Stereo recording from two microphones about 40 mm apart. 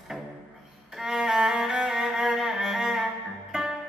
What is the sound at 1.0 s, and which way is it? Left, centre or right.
Music, centre.